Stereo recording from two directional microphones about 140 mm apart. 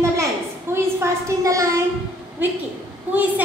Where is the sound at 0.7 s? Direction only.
15° right (ahead or behind).